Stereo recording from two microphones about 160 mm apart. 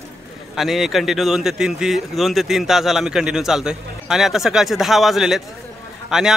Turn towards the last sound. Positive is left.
turn(degrees=0)  # may be behind; listen again after turning